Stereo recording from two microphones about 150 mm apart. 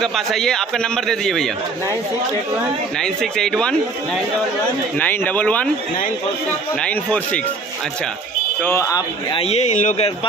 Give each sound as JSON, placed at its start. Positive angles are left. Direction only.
{"t": 0.0, "sound": "a man's voice", "side_deg": 0}
{"t": 3.0, "sound": "a man's voice", "side_deg": 5}
{"t": 6.8, "sound": "speech", "side_deg": 5}
{"t": 8.6, "sound": "speech", "side_deg": 20}
{"t": 9.3, "sound": "speech", "side_deg": 40}